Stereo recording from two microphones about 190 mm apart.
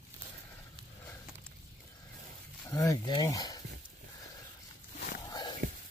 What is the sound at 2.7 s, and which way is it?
Speech, 15° left (ahead or behind).